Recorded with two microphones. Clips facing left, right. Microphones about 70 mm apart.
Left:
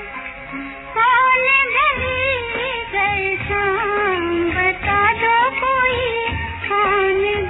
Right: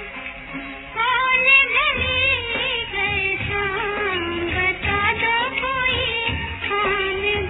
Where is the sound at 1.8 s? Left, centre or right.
Left.